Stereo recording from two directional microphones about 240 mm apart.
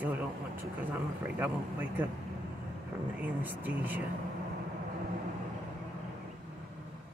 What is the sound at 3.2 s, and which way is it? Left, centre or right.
Speech, centre.